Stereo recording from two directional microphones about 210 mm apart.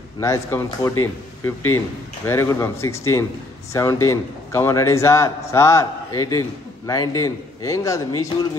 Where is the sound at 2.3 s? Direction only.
15° left (ahead or behind).